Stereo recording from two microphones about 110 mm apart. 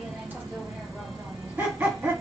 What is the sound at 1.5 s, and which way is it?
Dog, 15° right (ahead or behind).